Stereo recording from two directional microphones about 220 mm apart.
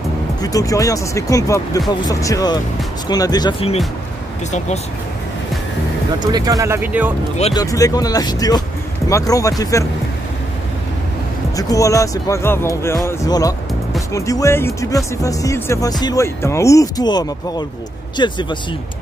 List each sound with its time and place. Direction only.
0.4 s speech: 15° left (ahead or behind)
6.1 s speech: 20° right (ahead or behind)
7.5 s speech: 15° left (ahead or behind)
11.5 s speech: 15° left (ahead or behind)